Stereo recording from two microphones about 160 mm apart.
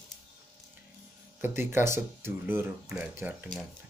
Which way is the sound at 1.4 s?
15° right (ahead or behind).